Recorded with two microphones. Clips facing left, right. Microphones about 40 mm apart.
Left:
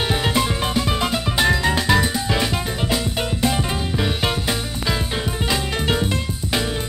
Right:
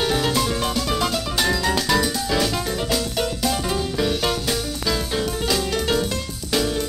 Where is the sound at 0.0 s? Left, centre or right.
Left.